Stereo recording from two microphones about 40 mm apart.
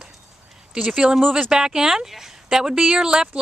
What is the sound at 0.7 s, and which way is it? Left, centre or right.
A woman's voice, right.